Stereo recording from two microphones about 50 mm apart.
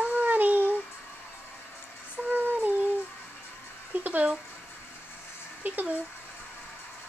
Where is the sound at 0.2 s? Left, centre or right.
Right.